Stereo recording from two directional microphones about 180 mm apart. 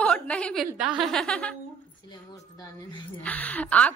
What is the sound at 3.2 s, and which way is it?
Speech, 10° left (ahead or behind).